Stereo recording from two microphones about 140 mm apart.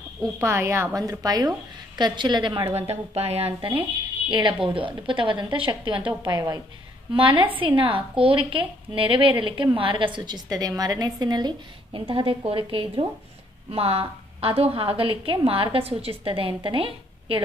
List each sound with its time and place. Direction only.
0.2 s a woman's voice: 20° right (ahead or behind); by 2.6 s 35° right (ahead or behind)
2.7 s speech: 50° right (ahead or behind)
4.3 s a woman's voice: 35° right (ahead or behind)